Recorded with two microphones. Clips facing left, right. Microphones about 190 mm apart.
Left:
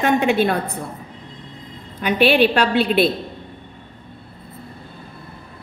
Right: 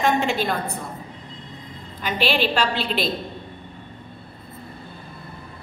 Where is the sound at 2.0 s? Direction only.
60° left (ahead or behind).